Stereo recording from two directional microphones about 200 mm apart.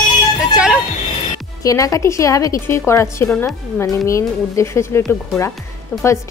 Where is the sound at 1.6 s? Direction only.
15° left (ahead or behind).